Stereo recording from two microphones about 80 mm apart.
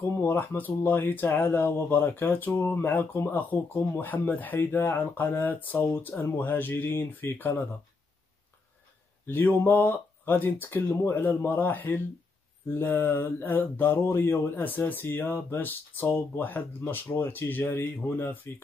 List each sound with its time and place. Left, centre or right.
0.0 s speech: left
9.2 s speech: left